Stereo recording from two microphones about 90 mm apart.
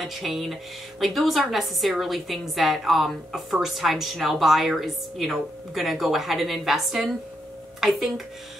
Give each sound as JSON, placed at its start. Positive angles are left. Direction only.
{"t": 0.0, "sound": "a woman's voice", "side_deg": 0}